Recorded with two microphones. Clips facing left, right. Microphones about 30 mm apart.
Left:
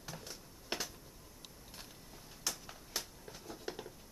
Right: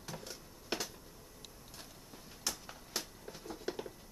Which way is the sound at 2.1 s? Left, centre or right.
Centre.